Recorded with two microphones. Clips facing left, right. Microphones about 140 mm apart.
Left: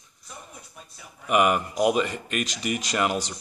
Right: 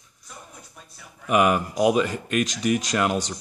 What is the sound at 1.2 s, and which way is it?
Speech, centre (ahead or behind).